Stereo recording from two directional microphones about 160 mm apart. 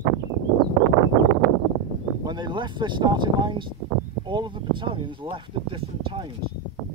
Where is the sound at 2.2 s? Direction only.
30° right (ahead or behind).